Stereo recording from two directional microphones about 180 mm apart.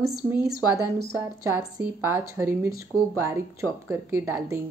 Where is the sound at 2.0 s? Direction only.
15° right (ahead or behind).